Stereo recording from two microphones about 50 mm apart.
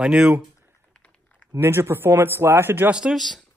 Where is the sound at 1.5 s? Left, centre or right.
Right.